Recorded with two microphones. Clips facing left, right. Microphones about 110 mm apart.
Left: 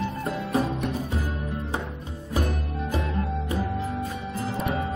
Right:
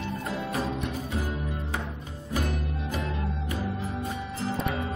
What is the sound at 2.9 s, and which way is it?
Music, 30° left (ahead or behind).